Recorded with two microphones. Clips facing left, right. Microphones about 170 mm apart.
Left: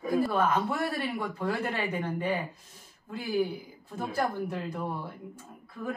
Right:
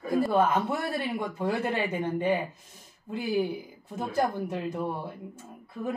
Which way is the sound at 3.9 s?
20° right (ahead or behind).